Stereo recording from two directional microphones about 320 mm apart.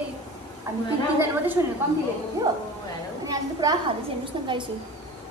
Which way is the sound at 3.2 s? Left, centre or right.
Centre.